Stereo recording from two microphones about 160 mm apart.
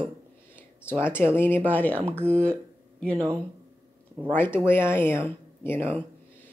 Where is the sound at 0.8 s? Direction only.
15° left (ahead or behind).